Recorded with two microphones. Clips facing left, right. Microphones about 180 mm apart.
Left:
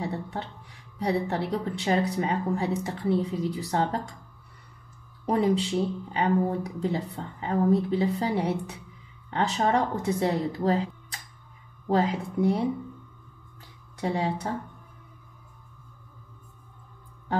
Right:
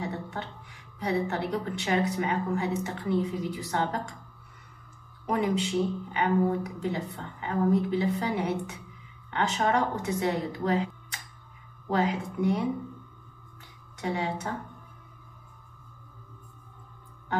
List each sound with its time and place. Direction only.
0.0 s music: 35° left (ahead or behind)
0.9 s speech: 30° left (ahead or behind)
5.2 s speech: 35° left (ahead or behind)
13.9 s speech: 35° left (ahead or behind)